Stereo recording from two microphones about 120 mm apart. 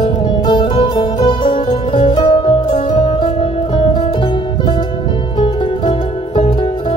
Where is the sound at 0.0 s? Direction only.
40° left (ahead or behind).